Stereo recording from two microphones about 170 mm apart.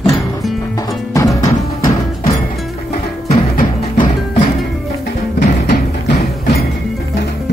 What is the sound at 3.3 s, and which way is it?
Music, 55° left (ahead or behind).